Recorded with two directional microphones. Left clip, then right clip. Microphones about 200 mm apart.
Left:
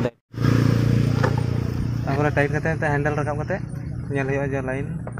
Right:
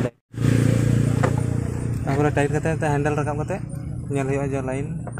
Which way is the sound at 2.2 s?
15° right (ahead or behind).